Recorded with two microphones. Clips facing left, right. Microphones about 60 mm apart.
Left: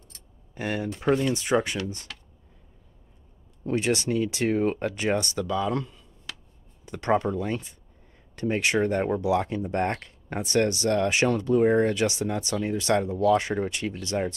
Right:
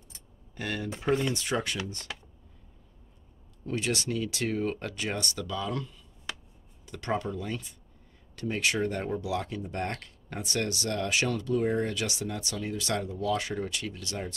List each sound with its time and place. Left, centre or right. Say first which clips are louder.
0.6 s speech: left 5 dB; centre
2.1 s computer keyboard: right 3 dB; centre
3.6 s speech: left 6 dB; left